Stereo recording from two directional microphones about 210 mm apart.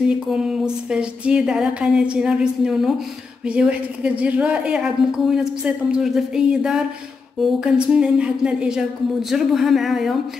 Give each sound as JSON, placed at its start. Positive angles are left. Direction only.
{"t": 0.1, "sound": "a woman's voice", "side_deg": -5}